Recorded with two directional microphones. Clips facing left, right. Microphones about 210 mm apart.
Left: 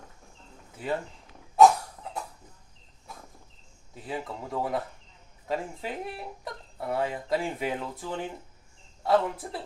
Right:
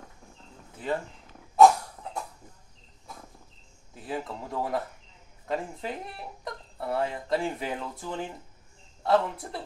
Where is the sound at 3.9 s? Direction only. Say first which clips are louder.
Right 1 dB; centre (ahead or behind).